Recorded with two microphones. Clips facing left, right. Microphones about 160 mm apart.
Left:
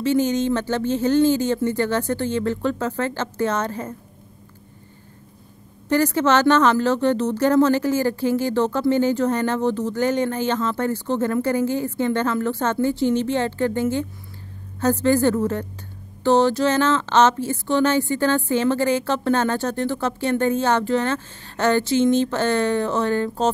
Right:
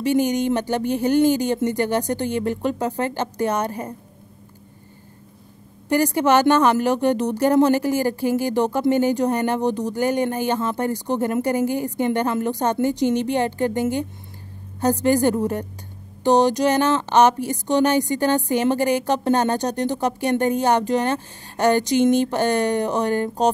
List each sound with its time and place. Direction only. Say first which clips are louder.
0.0 s speech: even; 15° right (ahead or behind)
5.9 s speech: even; 15° right (ahead or behind)